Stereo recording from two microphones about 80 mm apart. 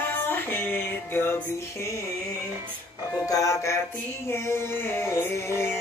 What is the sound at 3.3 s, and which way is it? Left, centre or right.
Music, left.